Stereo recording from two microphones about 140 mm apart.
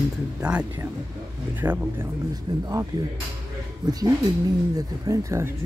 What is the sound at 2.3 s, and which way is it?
Speech, 25° right (ahead or behind).